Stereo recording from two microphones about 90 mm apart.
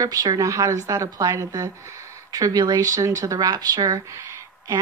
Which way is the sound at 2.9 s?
35° right (ahead or behind).